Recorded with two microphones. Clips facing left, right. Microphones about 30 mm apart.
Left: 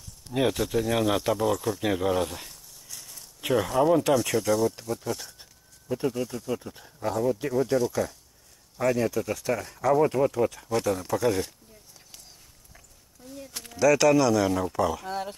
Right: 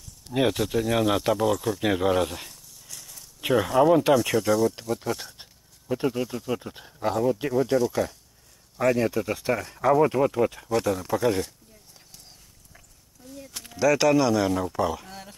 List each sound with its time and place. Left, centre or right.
0.3 s speech: centre
1.8 s speech: right
2.5 s a sound: centre
3.3 s speech: centre; by 7.2 s right
7.5 s speech: centre
10.7 s speech: centre
13.3 s a sound: centre
13.7 s speech: centre
14.5 s speech: centre
15.0 s speech: left